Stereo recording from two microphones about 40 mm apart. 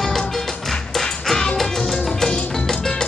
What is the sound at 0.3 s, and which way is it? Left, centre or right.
Music, centre.